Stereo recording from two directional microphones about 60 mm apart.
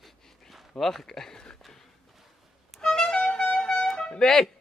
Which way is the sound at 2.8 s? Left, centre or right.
Centre.